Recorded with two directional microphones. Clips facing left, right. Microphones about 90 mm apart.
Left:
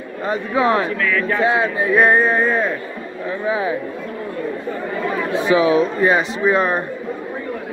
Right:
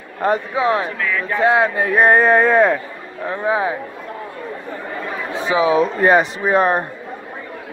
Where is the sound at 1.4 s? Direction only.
55° right (ahead or behind).